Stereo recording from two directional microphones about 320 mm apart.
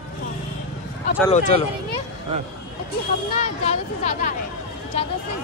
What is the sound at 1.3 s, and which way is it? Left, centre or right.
Speech, left.